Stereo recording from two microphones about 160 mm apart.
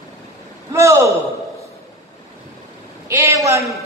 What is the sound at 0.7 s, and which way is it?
Speech, 20° right (ahead or behind).